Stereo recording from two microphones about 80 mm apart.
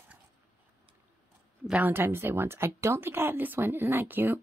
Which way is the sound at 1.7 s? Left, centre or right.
Right.